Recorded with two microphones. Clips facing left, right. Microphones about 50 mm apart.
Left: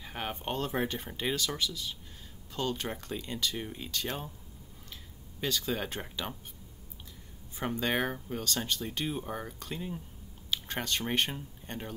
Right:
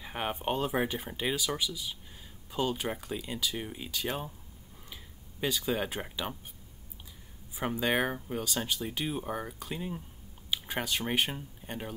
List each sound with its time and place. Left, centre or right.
0.0 s speech: centre
5.4 s speech: centre
7.5 s speech: centre